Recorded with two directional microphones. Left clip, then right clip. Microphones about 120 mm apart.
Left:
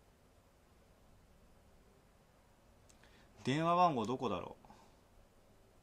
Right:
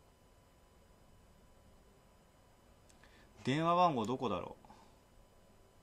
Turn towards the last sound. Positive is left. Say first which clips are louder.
# right 2 dB
turn(degrees=-5)  # may be behind; listen again after turning